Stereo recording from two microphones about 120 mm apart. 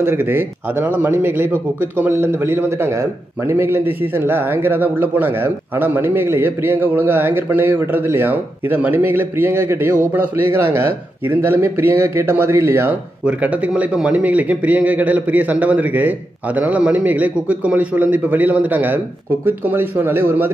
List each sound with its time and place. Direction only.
0.0 s speech: 20° right (ahead or behind)